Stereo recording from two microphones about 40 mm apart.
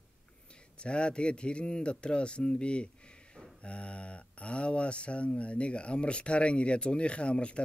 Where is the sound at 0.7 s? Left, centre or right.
Left.